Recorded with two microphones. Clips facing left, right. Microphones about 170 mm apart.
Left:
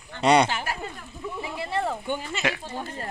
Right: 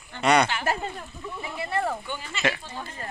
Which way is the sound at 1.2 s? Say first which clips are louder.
Left 4 dB; 10° left (ahead or behind).